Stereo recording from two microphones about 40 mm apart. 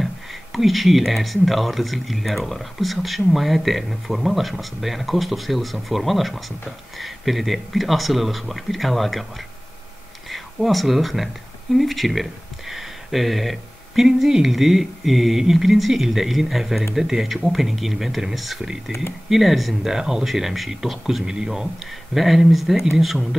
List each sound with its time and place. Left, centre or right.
0.0 s speech: centre
10.3 s speech: centre
21.3 s speech: centre
22.1 s speech: centre